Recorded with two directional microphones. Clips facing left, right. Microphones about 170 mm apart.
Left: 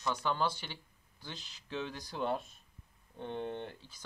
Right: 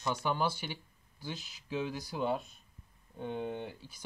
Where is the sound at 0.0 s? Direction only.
10° right (ahead or behind).